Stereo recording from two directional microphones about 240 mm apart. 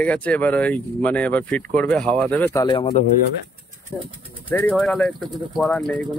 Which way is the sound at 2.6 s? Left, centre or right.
Left.